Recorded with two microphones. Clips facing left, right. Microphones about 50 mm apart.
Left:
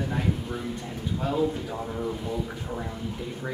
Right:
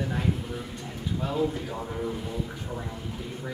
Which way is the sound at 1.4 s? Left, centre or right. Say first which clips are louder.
Left 2 dB; centre.